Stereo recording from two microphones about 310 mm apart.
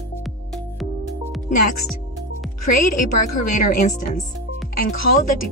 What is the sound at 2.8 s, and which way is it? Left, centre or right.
Speech, left.